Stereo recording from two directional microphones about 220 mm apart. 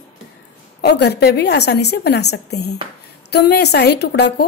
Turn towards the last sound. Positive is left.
turn(degrees=50)  # may be behind; listen again after turning